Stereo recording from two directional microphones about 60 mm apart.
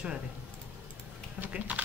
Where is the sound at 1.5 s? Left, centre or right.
Right.